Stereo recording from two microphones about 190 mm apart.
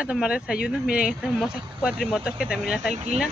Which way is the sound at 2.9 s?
35° right (ahead or behind).